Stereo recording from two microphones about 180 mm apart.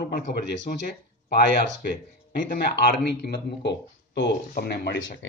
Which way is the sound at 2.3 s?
65° left (ahead or behind).